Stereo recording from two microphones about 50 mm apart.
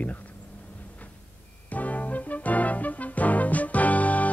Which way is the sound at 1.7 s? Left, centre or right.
Left.